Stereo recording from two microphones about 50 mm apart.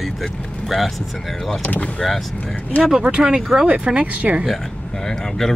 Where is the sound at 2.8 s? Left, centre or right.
Centre.